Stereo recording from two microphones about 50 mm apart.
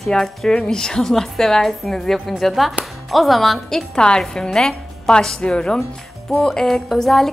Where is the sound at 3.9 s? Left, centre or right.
Centre.